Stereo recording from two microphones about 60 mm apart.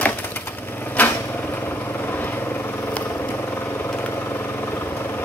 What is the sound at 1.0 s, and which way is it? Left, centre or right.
Vehicle, left.